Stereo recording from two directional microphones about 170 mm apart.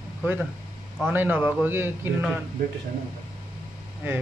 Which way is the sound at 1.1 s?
10° right (ahead or behind).